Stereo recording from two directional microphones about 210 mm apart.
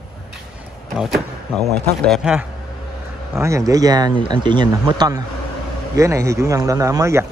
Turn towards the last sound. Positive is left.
turn(degrees=-15)  # may be behind; listen again after turning